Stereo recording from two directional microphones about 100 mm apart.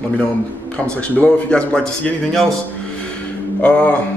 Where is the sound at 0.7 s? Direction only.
10° left (ahead or behind).